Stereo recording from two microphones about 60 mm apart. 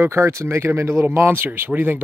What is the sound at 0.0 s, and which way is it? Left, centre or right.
Speech, right.